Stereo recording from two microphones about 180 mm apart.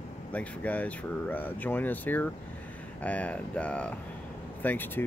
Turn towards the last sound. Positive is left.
turn(degrees=10)  # may be behind; listen again after turning